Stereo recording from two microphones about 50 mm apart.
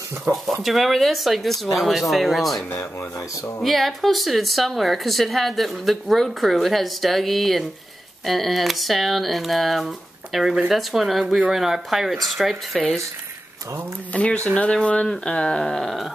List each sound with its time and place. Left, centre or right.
0.3 s speech: centre
3.3 s speech: left
3.6 s speech: centre
14.1 s speech: left
15.0 s a sound: centre